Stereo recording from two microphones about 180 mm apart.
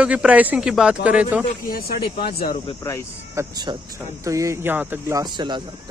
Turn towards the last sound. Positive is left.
turn(degrees=-25)  # may be behind; listen again after turning